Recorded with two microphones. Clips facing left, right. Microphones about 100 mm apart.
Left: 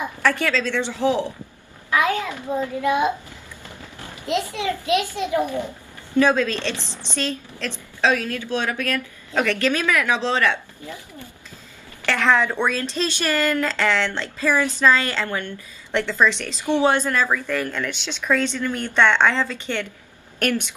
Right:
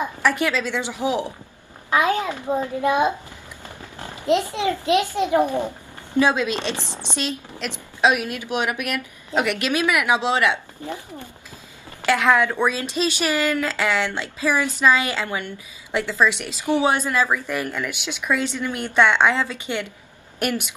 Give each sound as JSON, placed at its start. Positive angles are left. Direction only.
{"t": 0.0, "sound": "a child's voice", "side_deg": -15}